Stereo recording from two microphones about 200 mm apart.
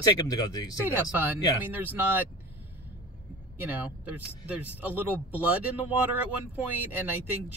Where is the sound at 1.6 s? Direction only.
10° right (ahead or behind).